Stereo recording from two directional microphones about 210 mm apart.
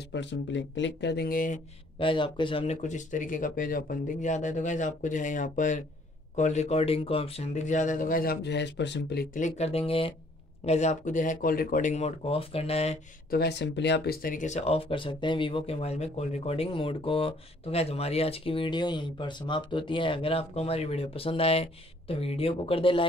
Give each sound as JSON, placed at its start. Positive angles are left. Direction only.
{"t": 0.1, "sound": "speech", "side_deg": 60}
{"t": 2.0, "sound": "speech", "side_deg": 25}
{"t": 13.3, "sound": "speech", "side_deg": 50}